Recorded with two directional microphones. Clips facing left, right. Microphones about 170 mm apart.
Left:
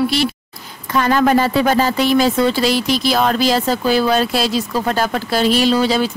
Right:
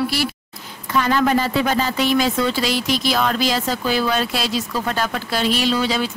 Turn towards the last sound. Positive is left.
turn(degrees=40)  # may be behind; listen again after turning